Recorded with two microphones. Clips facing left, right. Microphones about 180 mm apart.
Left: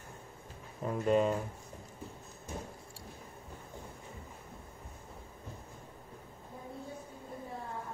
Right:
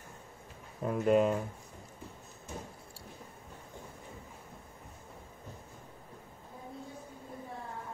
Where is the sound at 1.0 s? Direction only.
5° right (ahead or behind).